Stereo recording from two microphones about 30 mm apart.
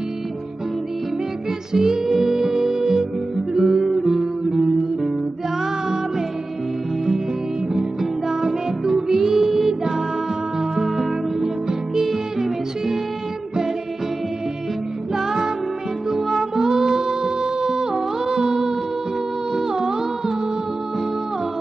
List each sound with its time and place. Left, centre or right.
1.7 s music: centre
7.7 s music: centre
15.1 s music: centre